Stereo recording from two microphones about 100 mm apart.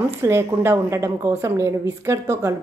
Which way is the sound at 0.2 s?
25° right (ahead or behind).